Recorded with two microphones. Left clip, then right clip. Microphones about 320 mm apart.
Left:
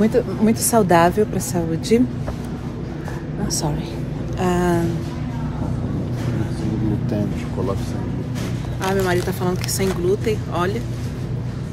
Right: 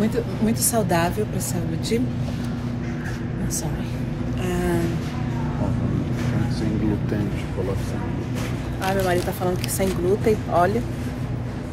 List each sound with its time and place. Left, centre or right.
0.0 s a woman's voice: left
4.4 s a sound: centre
8.8 s speech: centre